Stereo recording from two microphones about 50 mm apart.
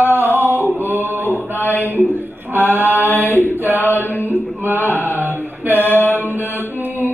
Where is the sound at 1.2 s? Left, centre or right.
Left.